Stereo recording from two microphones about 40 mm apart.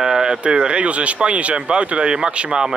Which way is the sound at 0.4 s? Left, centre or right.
Right.